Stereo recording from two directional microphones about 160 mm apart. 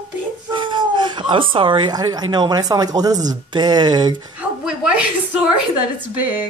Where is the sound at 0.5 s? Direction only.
30° right (ahead or behind).